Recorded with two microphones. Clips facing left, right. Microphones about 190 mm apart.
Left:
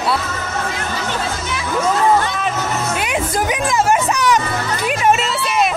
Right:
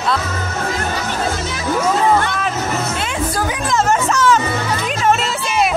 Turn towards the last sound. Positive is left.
turn(degrees=10)  # may be behind; listen again after turning